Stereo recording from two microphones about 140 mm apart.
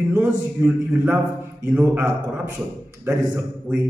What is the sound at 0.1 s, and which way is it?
A man's voice, 15° right (ahead or behind).